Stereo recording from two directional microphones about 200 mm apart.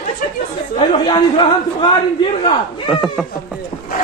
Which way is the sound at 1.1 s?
25° left (ahead or behind).